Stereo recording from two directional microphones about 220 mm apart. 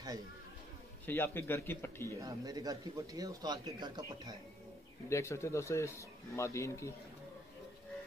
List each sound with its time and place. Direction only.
1.0 s speech: 10° left (ahead or behind)
2.1 s speech: 15° right (ahead or behind)
5.1 s speech: 10° left (ahead or behind)